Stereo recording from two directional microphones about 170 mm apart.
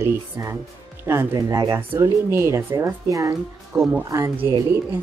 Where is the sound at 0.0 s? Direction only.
20° right (ahead or behind).